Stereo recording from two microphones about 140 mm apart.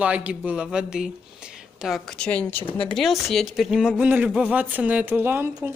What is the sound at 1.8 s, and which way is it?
A woman's voice, centre (ahead or behind).